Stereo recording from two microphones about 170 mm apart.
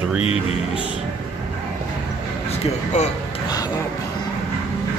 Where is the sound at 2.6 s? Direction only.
40° left (ahead or behind).